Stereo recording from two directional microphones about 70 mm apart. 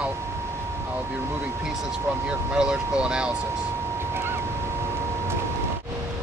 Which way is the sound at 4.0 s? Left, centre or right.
Right.